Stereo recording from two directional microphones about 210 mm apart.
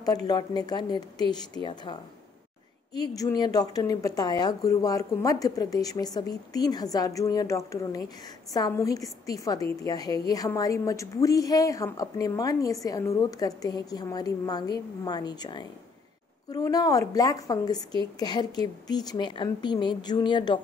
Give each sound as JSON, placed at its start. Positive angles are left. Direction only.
{"t": 0.0, "sound": "a woman's voice", "side_deg": 15}